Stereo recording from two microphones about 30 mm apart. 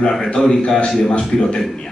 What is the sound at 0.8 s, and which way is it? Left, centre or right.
Speech, left.